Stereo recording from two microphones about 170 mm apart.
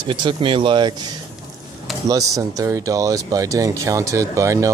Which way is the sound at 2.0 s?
20° right (ahead or behind).